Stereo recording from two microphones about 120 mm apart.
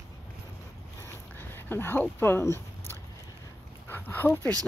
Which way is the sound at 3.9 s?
15° left (ahead or behind).